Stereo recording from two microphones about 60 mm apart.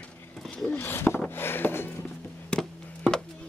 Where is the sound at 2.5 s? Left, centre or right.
Centre.